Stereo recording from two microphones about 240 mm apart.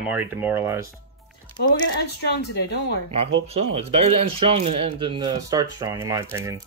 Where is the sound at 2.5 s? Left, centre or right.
Left.